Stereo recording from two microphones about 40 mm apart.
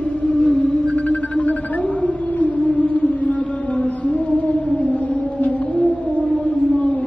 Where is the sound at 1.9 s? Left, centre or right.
Left.